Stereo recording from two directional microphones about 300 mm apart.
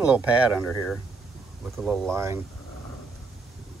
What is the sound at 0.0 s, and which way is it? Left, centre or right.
Speech, centre.